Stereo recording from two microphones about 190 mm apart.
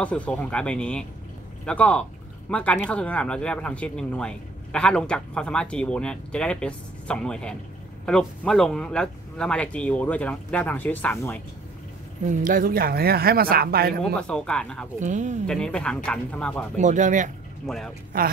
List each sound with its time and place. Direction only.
0.0 s speech: 5° left (ahead or behind)
12.4 s speech: 50° right (ahead or behind)
14.2 s speech: 5° left (ahead or behind)
15.0 s speech: 40° right (ahead or behind)
15.4 s speech: 5° left (ahead or behind)
16.7 s speech: 40° right (ahead or behind)
17.6 s speech: 5° left (ahead or behind)